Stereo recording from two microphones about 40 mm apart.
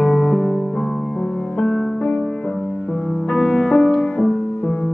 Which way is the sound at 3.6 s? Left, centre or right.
Left.